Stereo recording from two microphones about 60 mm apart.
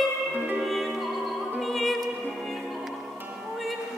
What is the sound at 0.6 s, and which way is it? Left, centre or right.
Music, centre.